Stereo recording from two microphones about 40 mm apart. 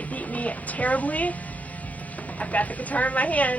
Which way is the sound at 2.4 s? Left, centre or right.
Left.